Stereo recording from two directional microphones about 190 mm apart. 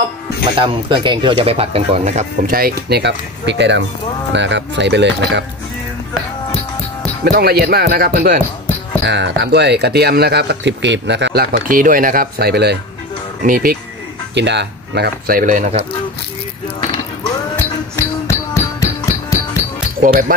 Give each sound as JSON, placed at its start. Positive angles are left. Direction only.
{"t": 0.6, "sound": "speech", "side_deg": -25}
{"t": 7.2, "sound": "speech", "side_deg": -55}
{"t": 9.0, "sound": "speech", "side_deg": -65}
{"t": 14.3, "sound": "speech", "side_deg": -65}
{"t": 17.2, "sound": "music", "side_deg": 10}
{"t": 20.0, "sound": "speech", "side_deg": -45}